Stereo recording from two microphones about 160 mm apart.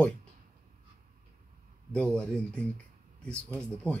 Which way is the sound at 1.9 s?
5° left (ahead or behind).